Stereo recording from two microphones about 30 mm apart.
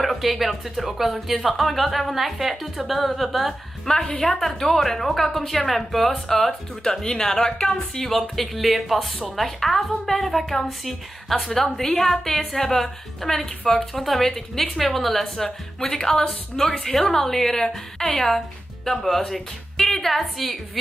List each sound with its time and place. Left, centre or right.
0.0 s a woman's voice: centre
3.8 s a woman's voice: centre
6.8 s a woman's voice: left
8.1 s a woman's voice: centre
14.3 s a woman's voice: centre
14.8 s a woman's voice: centre
15.9 s a woman's voice: centre